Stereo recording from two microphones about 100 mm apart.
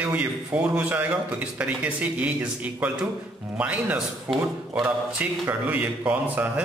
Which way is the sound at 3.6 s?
15° right (ahead or behind).